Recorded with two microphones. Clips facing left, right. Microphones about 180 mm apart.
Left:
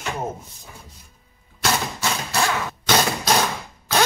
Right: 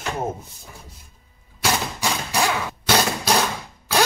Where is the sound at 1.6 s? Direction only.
15° right (ahead or behind).